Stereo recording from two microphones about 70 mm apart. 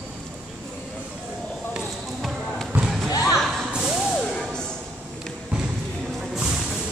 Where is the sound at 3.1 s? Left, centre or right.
Left.